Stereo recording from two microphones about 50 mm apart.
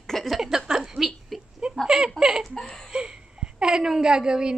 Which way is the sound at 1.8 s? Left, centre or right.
Centre.